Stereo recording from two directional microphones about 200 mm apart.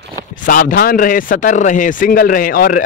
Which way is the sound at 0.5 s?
45° left (ahead or behind).